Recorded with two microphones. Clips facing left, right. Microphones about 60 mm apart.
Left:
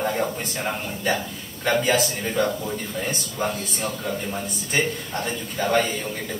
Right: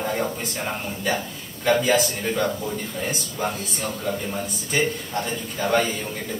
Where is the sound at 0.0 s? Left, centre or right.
Centre.